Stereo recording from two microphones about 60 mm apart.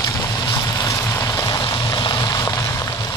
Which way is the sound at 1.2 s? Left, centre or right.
Left.